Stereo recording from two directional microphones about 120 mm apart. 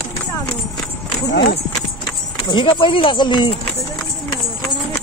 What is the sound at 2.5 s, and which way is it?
Speech, 40° left (ahead or behind).